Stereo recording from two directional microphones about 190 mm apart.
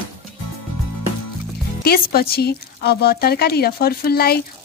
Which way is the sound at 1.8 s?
55° left (ahead or behind).